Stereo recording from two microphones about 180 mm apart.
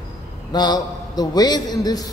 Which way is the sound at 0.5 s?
25° left (ahead or behind).